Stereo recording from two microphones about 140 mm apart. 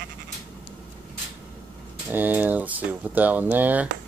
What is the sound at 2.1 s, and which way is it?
Speech, 15° right (ahead or behind).